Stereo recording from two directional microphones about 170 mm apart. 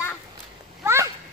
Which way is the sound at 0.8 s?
15° right (ahead or behind).